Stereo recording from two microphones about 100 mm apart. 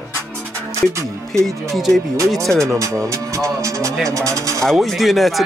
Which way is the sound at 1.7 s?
Centre (ahead or behind).